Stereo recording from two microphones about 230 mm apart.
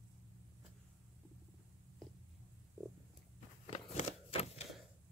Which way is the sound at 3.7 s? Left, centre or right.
Left.